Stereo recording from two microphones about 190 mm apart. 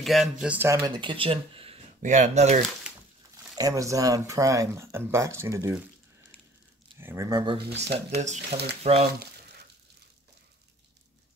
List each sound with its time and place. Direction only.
0.0 s speech: centre (ahead or behind)
0.8 s speech: 25° right (ahead or behind)
3.5 s speech: 15° right (ahead or behind)
7.0 s speech: 15° right (ahead or behind)
8.2 s speech: 40° right (ahead or behind)